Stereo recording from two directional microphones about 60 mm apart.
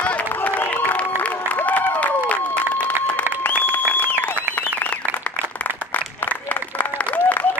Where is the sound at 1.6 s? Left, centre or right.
Left.